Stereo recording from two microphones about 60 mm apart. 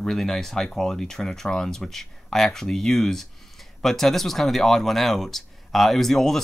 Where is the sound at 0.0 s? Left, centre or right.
Centre.